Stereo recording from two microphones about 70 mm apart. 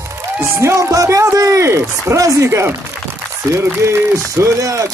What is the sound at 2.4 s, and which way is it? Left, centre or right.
Speech, right.